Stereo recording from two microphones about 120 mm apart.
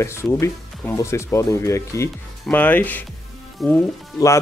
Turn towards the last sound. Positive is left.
turn(degrees=25)  # may be behind; listen again after turning